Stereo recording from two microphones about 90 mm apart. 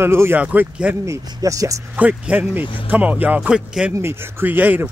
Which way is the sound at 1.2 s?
45° right (ahead or behind).